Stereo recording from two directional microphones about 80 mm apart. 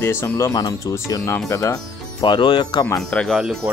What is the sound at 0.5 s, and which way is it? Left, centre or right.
Speech, left.